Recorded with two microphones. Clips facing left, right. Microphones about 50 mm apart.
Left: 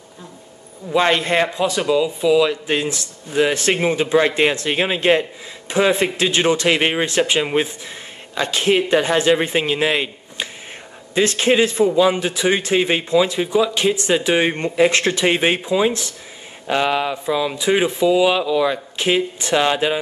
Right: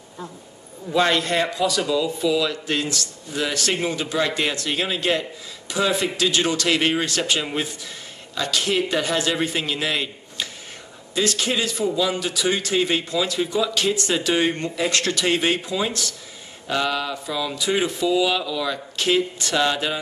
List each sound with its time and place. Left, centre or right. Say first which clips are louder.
0.9 s speech: left 3 dB; left